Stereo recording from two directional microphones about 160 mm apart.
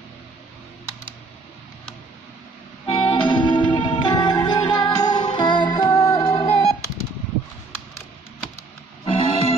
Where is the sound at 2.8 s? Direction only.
30° left (ahead or behind).